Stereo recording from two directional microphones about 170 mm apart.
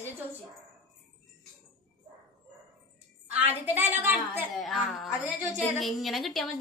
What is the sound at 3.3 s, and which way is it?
A woman's voice, 10° right (ahead or behind).